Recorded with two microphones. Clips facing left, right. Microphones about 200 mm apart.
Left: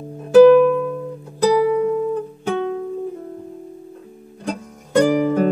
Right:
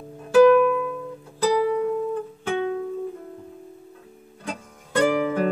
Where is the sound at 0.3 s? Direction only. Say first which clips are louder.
Left 6 dB; 35° left (ahead or behind).